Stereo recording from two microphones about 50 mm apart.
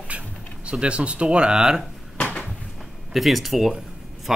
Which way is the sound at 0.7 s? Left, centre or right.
Right.